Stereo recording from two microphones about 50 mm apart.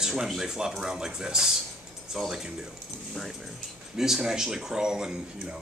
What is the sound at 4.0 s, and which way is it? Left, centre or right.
Speech, centre.